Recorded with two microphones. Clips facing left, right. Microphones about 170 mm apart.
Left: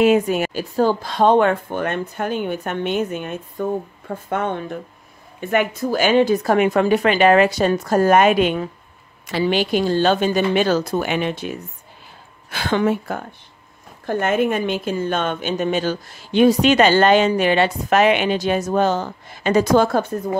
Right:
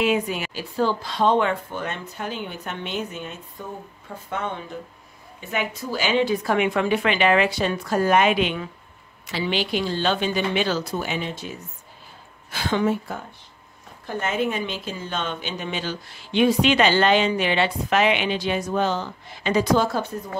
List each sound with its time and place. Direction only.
0.0 s a woman's voice: 50° left (ahead or behind)